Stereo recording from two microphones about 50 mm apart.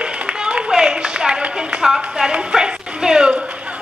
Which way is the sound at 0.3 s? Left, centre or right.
Centre.